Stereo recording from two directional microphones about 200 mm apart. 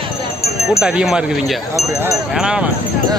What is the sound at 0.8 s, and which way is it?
Speech, 5° right (ahead or behind).